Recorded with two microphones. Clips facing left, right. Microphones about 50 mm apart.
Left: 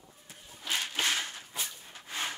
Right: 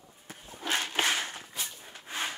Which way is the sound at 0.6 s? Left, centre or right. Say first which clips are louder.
Right 3 dB; right.